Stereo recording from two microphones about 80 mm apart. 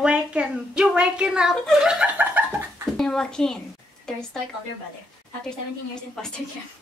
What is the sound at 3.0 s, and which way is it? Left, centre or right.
Speech, centre.